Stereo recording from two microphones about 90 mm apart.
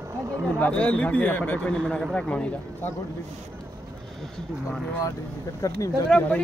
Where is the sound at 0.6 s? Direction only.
15° left (ahead or behind).